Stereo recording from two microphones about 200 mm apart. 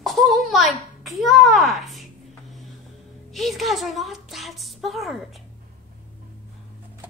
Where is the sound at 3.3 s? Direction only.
Centre (ahead or behind).